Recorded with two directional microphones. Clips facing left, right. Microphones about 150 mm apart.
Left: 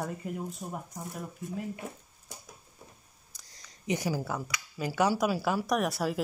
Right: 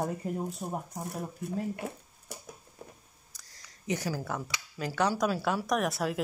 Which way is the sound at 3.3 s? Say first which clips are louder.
Left 2 dB; 15° left (ahead or behind).